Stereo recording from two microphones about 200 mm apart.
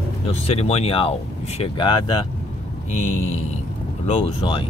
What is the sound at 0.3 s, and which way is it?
Speech, 35° left (ahead or behind).